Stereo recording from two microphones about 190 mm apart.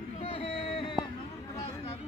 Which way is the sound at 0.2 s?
30° left (ahead or behind).